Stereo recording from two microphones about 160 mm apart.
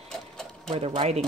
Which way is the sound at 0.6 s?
35° right (ahead or behind).